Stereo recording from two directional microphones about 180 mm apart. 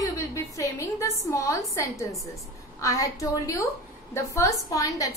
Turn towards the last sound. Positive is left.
turn(degrees=20)  # may be behind; listen again after turning